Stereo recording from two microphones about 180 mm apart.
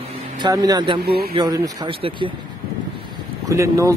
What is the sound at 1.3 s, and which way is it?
Speech, 25° right (ahead or behind).